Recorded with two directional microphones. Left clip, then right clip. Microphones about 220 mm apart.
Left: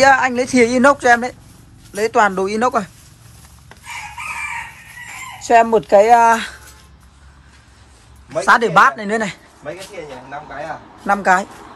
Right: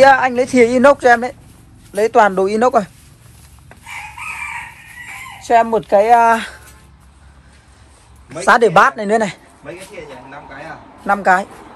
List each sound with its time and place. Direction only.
0.0 s speech: 5° left (ahead or behind)
5.4 s speech: 15° left (ahead or behind)
8.5 s speech: centre (ahead or behind)
11.1 s speech: 10° left (ahead or behind)